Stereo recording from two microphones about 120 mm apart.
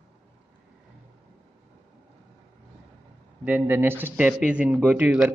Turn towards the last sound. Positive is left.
turn(degrees=-10)  # may be behind; listen again after turning